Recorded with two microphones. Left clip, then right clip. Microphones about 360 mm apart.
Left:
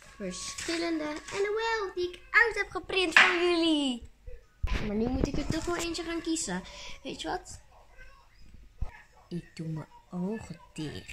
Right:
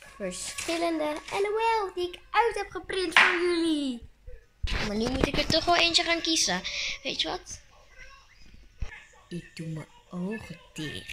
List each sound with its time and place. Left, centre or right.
0.3 s a child's voice: centre
5.0 s speech: right
5.9 s a child's voice: centre
9.3 s speech: centre